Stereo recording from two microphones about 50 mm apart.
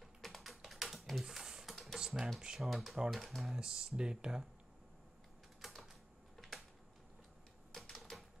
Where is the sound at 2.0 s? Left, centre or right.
Centre.